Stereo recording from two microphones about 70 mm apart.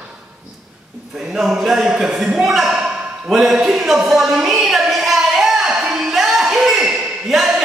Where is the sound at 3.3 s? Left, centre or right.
Centre.